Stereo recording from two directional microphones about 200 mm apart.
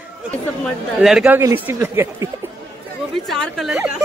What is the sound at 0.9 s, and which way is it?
Speech, 5° right (ahead or behind).